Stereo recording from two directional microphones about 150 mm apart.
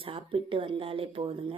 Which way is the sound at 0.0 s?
40° right (ahead or behind).